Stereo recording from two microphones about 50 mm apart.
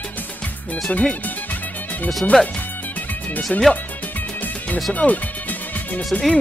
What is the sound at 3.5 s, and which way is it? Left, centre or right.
Speech, centre.